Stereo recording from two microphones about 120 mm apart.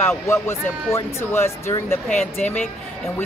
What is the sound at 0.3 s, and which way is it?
Speech, 20° left (ahead or behind).